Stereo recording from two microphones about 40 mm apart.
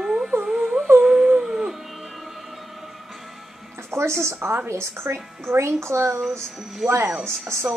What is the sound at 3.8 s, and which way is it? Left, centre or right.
Music, right.